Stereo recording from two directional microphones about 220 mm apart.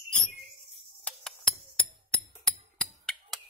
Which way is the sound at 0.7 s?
5° left (ahead or behind).